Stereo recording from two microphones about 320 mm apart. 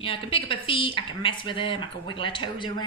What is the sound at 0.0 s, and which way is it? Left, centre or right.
Speech, centre.